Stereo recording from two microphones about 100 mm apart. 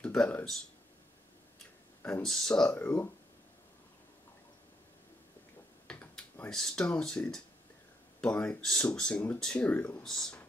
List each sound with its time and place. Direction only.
0.0 s speech: 10° left (ahead or behind)
2.2 s speech: 5° left (ahead or behind)
2.8 s speech: 20° left (ahead or behind)
5.9 s a sound: 15° left (ahead or behind)
6.5 s speech: 5° left (ahead or behind)
10.0 s speech: 5° left (ahead or behind)